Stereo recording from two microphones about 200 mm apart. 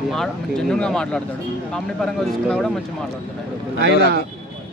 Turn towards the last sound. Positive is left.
turn(degrees=-55)  # may be behind; listen again after turning